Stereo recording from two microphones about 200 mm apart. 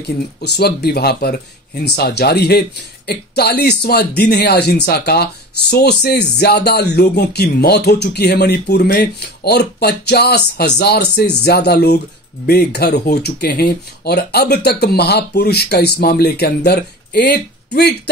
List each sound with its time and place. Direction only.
0.4 s speech: 55° left (ahead or behind)